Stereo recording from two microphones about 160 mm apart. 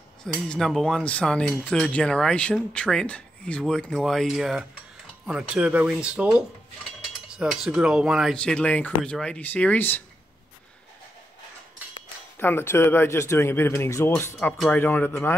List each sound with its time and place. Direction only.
0.2 s speech: 5° left (ahead or behind)
12.4 s speech: 15° left (ahead or behind)